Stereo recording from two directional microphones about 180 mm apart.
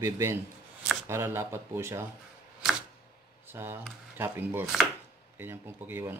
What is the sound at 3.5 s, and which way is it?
Speech, 15° right (ahead or behind).